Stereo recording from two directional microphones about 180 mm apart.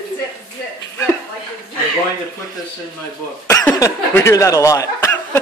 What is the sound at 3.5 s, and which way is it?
Speech, 20° left (ahead or behind).